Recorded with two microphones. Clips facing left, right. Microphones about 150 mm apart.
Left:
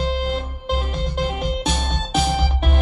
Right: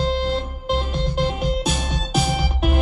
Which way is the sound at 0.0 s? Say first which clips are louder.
Right 2 dB; 35° right (ahead or behind).